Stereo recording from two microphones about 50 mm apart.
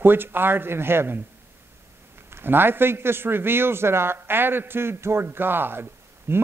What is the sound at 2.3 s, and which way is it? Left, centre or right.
Speech, right.